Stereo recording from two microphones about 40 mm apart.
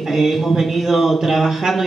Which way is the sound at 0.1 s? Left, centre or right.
Centre.